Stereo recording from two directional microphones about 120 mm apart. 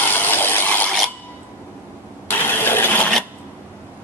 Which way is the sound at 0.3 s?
15° left (ahead or behind).